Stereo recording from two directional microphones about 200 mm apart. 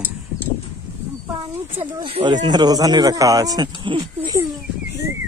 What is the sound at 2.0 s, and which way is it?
Speech, 25° right (ahead or behind).